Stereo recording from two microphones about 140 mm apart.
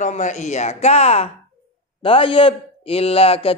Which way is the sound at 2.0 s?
40° left (ahead or behind).